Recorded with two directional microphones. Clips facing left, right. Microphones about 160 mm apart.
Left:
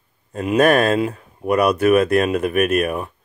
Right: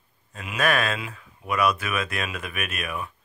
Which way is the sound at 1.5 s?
55° left (ahead or behind).